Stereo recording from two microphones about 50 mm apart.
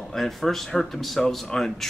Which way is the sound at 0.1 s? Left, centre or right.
Centre.